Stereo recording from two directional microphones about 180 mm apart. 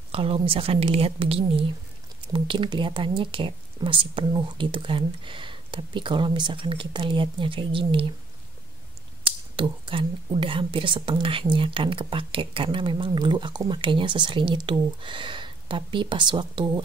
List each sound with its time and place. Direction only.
0.1 s a woman's voice: 30° right (ahead or behind)
9.6 s speech: 30° right (ahead or behind)